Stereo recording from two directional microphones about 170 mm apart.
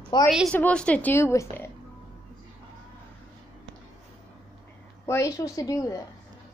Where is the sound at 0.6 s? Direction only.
5° left (ahead or behind).